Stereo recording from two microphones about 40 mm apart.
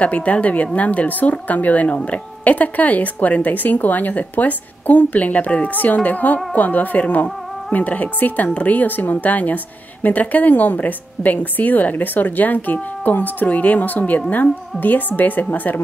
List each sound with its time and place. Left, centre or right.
0.0 s a woman's voice: left